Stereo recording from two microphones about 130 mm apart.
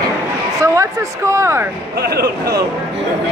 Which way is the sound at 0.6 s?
25° right (ahead or behind).